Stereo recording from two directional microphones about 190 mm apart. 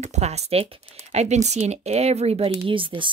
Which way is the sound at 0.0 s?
35° right (ahead or behind).